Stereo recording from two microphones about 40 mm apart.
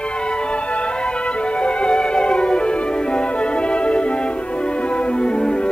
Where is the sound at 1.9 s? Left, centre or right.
Left.